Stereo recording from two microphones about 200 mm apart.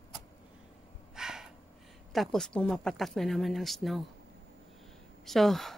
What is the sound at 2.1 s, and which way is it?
Speech, centre (ahead or behind).